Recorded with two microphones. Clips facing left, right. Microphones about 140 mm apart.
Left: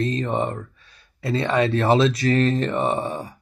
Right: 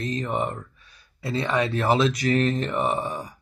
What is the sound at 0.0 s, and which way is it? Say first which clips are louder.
Speech: left 4 dB; 25° left (ahead or behind).